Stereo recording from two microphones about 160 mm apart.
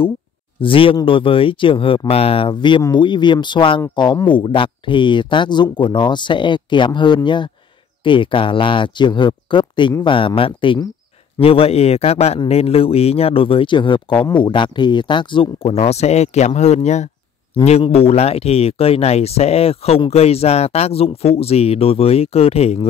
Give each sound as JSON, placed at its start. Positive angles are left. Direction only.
{"t": 0.6, "sound": "a man's voice", "side_deg": 35}